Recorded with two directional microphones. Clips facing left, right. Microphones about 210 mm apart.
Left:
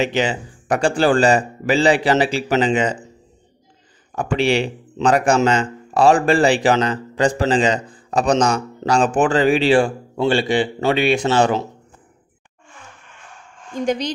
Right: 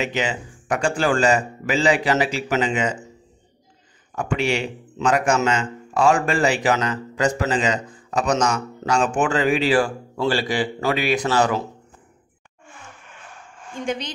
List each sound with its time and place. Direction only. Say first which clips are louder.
0.0 s speech: left 5 dB; 30° left (ahead or behind)
4.1 s speech: left 4 dB; 30° left (ahead or behind)
13.8 s speech: left 6 dB; 40° left (ahead or behind)